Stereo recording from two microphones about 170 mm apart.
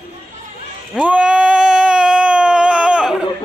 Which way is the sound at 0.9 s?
5° right (ahead or behind).